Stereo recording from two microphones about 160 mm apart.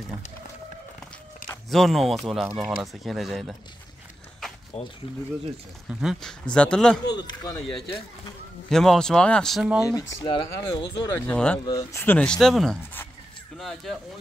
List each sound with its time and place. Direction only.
1.7 s speech: centre (ahead or behind)
4.7 s speech: 40° left (ahead or behind)
5.9 s speech: centre (ahead or behind)
7.2 s speech: 25° left (ahead or behind)
8.6 s speech: 5° left (ahead or behind)
9.8 s speech: 25° left (ahead or behind)
11.2 s speech: 10° left (ahead or behind)
11.6 s speech: 20° left (ahead or behind); by 13.9 s centre (ahead or behind)